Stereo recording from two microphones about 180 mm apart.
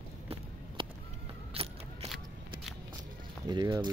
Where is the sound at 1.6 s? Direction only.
35° right (ahead or behind).